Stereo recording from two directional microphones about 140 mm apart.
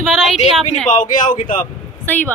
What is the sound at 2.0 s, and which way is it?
Speech, 10° left (ahead or behind).